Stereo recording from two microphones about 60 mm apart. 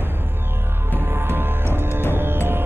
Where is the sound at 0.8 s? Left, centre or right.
Right.